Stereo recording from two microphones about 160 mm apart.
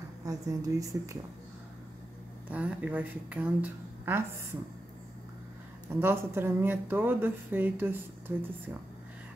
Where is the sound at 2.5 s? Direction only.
10° right (ahead or behind).